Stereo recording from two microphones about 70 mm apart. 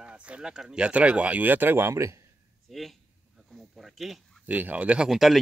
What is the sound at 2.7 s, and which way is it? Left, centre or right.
Speech, centre.